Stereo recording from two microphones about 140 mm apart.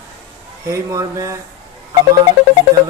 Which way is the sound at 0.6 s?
20° right (ahead or behind).